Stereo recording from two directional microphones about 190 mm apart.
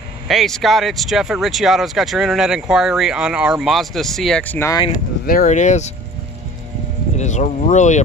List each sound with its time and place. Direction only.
0.3 s speech: centre (ahead or behind)
5.2 s speech: 50° left (ahead or behind)
7.2 s speech: 40° left (ahead or behind)